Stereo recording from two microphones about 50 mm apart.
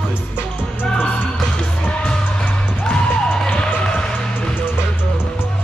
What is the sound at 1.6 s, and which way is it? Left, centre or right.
Music, centre.